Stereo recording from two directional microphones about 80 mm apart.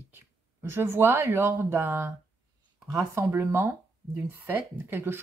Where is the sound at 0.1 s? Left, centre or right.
Right.